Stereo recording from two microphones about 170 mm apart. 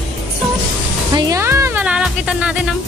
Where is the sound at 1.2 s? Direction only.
20° right (ahead or behind).